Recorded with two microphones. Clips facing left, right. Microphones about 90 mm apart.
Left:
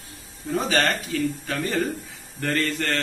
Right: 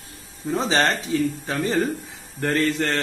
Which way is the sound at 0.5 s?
25° right (ahead or behind).